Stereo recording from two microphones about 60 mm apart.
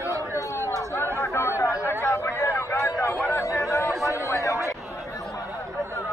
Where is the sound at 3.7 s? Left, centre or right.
Left.